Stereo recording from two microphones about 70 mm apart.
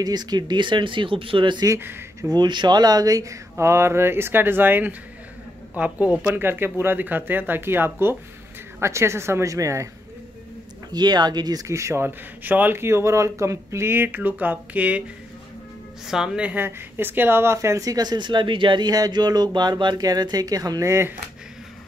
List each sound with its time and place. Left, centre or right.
0.0 s speech: right
1.8 s speech: right
2.3 s speech: right
6.4 s speech: right
10.9 s speech: right
11.6 s speech: right
12.8 s speech: right; by 15.0 s centre
16.1 s a woman's voice: centre
16.4 s speech: right
17.6 s speech: right
20.8 s speech: right